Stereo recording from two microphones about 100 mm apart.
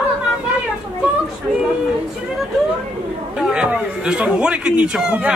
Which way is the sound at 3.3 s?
5° right (ahead or behind).